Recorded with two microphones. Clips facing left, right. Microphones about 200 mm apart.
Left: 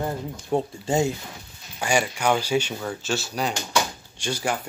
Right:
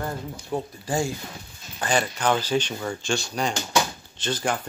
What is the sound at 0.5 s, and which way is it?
Speech, 25° left (ahead or behind).